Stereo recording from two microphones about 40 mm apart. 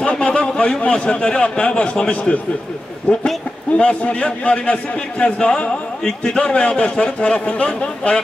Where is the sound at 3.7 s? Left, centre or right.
Left.